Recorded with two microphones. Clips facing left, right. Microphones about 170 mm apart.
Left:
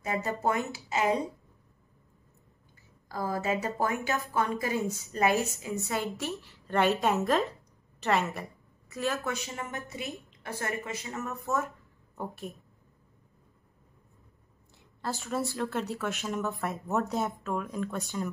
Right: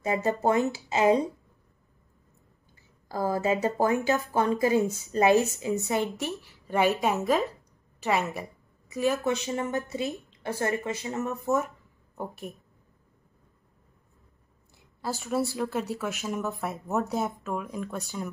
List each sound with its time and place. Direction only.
0.0 s a woman's voice: 25° right (ahead or behind)
3.1 s a woman's voice: 30° right (ahead or behind); by 12.5 s 15° right (ahead or behind)
15.0 s a woman's voice: 5° right (ahead or behind)